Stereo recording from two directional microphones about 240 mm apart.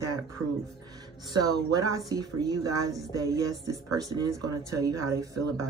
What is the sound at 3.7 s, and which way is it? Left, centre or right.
Speech, centre.